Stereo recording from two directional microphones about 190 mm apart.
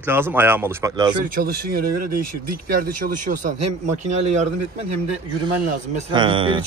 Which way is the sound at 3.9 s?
35° right (ahead or behind).